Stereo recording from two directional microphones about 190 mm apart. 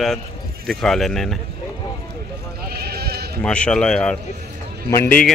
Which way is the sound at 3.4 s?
5° left (ahead or behind).